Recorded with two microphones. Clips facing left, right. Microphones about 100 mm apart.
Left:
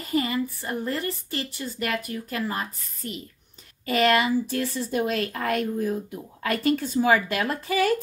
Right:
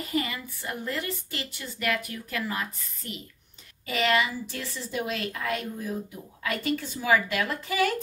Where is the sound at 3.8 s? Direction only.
50° left (ahead or behind).